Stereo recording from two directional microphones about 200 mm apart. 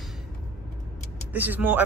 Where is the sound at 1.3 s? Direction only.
10° right (ahead or behind).